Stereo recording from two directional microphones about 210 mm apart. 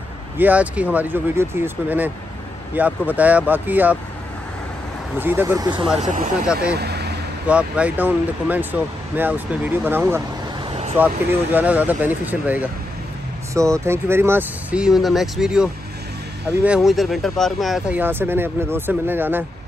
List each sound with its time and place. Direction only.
0.4 s speech: 5° right (ahead or behind)
5.2 s speech: 10° right (ahead or behind)
5.9 s speech: 35° right (ahead or behind)
6.4 s speech: 5° right (ahead or behind)
6.7 s vehicle: 50° right (ahead or behind)
7.4 s speech: 5° right (ahead or behind)